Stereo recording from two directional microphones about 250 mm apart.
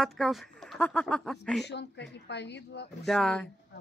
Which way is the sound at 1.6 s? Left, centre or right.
Left.